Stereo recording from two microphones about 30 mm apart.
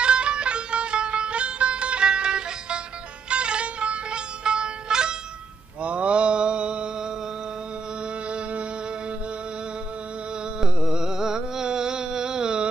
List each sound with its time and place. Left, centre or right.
0.0 s music: right
2.0 s music: right
5.8 s mantra: right
10.6 s a sound: right